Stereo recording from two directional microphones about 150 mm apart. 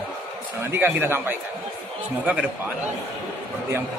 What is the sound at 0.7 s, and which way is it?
Speech, 15° right (ahead or behind).